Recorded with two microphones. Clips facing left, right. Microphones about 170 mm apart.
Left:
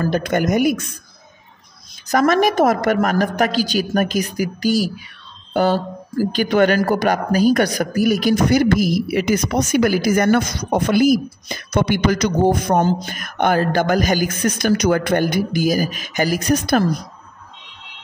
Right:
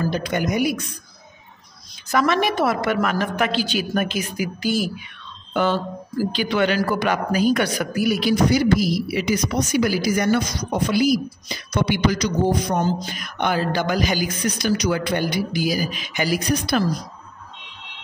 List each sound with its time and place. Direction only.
0.0 s speech: 50° left (ahead or behind)
2.0 s a woman's voice: 45° left (ahead or behind)